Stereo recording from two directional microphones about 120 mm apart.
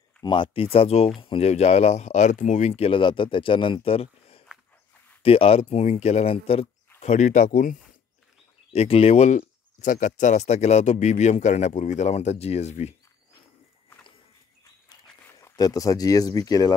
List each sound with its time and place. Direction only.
0.2 s speech: 45° left (ahead or behind); by 2.8 s 85° left
2.8 s speech: 45° left (ahead or behind)
7.0 s speech: 75° left (ahead or behind)
8.7 s speech: 55° left (ahead or behind)
15.0 s a sound: 15° left (ahead or behind)
15.5 s speech: 30° left (ahead or behind)